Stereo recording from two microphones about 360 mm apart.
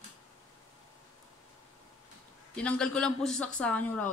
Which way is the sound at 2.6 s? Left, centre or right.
Centre.